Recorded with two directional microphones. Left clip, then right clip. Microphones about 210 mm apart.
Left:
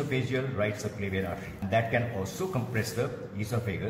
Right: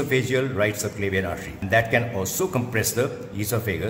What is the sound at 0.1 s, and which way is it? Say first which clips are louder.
A man's voice: right 9 dB; 50° right (ahead or behind).